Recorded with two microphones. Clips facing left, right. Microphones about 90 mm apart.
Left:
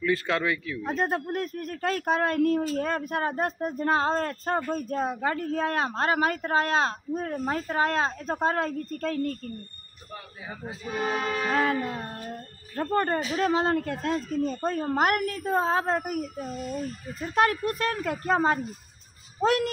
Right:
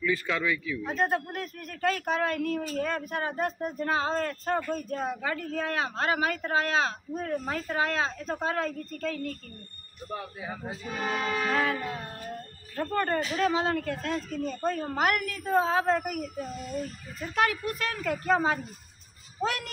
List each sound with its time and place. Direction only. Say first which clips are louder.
0.0 s speech: left 3 dB; 55° left (ahead or behind)
0.8 s speech: left 1 dB; 35° left (ahead or behind)
11.1 s music: left 1 dB; centre (ahead or behind)
11.5 s speech: left 3 dB; 35° left (ahead or behind)
17.2 s speech: left 3 dB; 40° left (ahead or behind)